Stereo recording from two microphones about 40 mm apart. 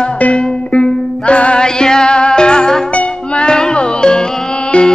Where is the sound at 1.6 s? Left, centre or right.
Centre.